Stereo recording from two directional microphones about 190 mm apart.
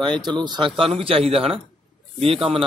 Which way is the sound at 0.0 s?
25° right (ahead or behind).